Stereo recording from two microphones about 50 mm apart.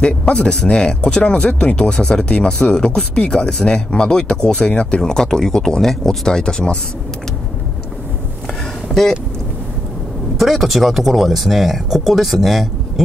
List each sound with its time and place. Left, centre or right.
0.0 s speech: left
8.9 s speech: centre
10.3 s speech: centre